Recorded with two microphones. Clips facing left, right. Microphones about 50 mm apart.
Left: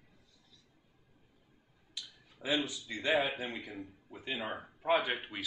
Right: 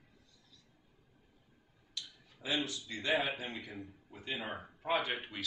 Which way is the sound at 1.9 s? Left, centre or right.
Centre.